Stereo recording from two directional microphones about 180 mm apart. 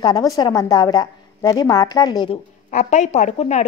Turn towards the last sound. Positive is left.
turn(degrees=40)  # may be behind; listen again after turning